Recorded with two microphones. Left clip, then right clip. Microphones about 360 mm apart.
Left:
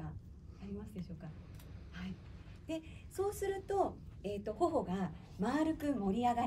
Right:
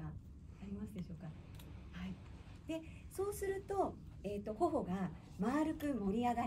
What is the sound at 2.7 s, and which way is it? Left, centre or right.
A woman's voice, centre.